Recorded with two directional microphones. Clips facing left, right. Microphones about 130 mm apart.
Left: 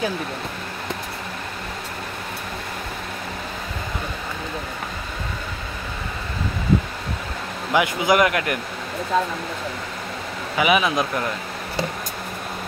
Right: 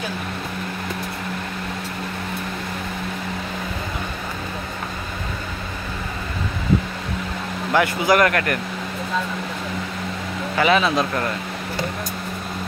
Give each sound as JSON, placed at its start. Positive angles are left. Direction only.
{"t": 7.7, "sound": "speech", "side_deg": 15}
{"t": 10.6, "sound": "speech", "side_deg": 15}